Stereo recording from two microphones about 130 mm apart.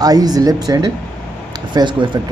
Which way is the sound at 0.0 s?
30° right (ahead or behind).